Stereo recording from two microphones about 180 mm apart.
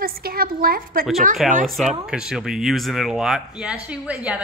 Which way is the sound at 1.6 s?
Centre (ahead or behind).